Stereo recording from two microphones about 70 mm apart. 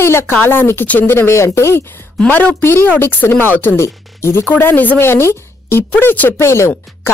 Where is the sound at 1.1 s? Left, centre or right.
Left.